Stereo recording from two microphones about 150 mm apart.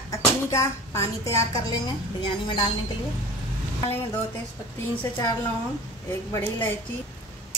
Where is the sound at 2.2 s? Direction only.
35° left (ahead or behind).